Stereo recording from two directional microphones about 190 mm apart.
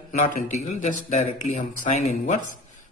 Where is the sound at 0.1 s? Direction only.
40° left (ahead or behind).